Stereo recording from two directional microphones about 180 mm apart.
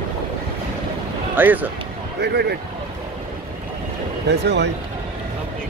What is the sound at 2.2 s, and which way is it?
Speech, 65° right (ahead or behind).